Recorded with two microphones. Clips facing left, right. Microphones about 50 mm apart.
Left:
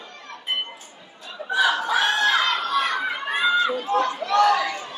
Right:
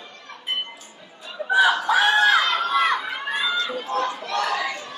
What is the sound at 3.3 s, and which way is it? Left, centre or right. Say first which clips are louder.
Run: left 5 dB; centre.